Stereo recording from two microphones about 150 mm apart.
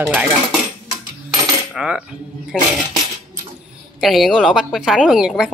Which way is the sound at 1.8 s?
5° right (ahead or behind).